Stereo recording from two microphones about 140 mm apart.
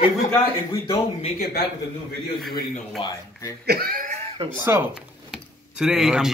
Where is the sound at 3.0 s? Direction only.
30° left (ahead or behind).